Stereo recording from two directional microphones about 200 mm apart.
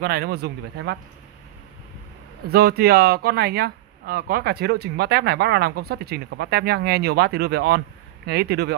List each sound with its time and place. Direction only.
0.0 s speech: 50° right (ahead or behind)
2.4 s speech: 50° right (ahead or behind)